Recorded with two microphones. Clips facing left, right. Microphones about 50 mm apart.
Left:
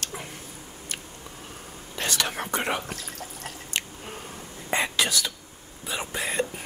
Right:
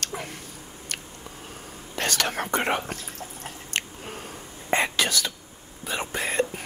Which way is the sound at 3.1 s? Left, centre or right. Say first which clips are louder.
Even; right.